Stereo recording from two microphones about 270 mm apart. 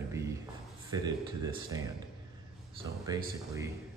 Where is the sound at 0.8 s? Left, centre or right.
Centre.